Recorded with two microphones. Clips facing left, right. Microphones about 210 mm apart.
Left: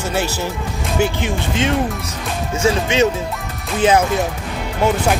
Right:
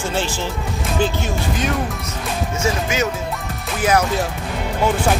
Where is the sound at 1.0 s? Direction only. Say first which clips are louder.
Left 2 dB; 10° left (ahead or behind).